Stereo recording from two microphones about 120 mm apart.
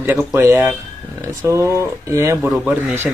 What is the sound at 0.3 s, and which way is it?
Speech, 20° right (ahead or behind).